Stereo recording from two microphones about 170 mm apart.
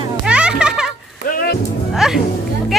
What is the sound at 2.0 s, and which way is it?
Music, centre (ahead or behind).